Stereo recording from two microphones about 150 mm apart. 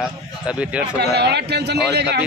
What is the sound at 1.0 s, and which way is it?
Speech, 90° right.